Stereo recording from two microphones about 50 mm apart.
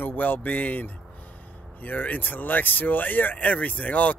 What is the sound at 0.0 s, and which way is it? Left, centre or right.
Speech, left.